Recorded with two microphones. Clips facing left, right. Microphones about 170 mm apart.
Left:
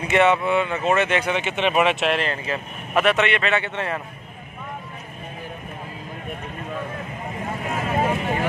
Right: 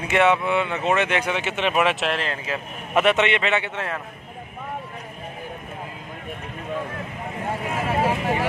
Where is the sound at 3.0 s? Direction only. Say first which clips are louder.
Even; 25° right (ahead or behind).